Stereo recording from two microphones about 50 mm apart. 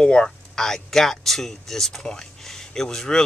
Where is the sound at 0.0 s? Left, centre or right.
Centre.